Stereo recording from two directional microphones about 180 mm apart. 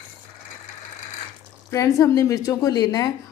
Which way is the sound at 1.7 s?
20° left (ahead or behind).